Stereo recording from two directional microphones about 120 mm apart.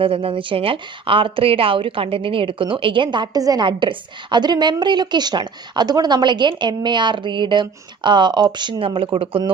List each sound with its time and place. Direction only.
0.0 s a woman's voice: 50° right (ahead or behind)